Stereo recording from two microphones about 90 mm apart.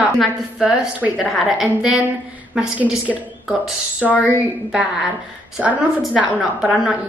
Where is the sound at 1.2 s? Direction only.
Centre (ahead or behind).